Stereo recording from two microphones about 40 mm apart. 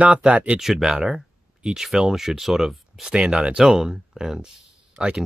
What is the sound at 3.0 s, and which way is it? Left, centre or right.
Speech, right.